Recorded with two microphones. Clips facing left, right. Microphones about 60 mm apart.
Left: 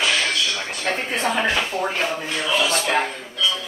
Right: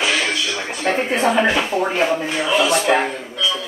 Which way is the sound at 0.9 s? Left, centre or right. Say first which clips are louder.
Right 7 dB; centre.